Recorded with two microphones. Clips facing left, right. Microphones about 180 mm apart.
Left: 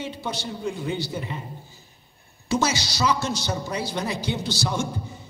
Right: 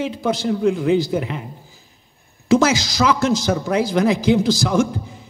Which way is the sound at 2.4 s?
90° right.